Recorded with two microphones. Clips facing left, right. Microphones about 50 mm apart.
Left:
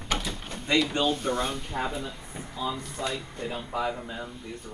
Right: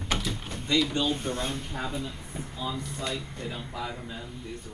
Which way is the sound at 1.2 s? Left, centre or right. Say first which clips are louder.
Left 4 dB; left.